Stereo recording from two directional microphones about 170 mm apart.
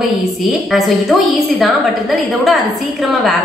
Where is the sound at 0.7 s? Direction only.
Centre (ahead or behind).